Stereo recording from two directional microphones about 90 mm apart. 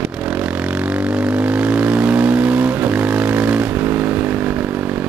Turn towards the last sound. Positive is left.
turn(degrees=-15)  # may be behind; listen again after turning